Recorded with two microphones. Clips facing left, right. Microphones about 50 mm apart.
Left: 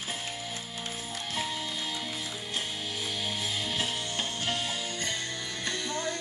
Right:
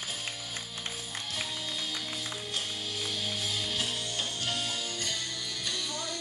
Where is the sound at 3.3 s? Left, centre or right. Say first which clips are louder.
Left 1 dB; left.